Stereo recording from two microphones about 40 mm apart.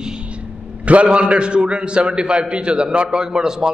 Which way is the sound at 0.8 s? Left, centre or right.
Right.